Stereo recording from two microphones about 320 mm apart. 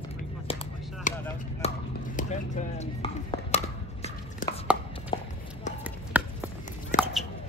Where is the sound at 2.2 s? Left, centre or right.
Left.